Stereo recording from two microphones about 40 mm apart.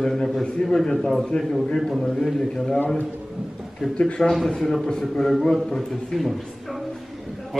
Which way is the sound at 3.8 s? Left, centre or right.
Centre.